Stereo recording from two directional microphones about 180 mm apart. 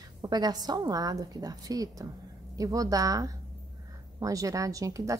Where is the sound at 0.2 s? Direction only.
20° right (ahead or behind).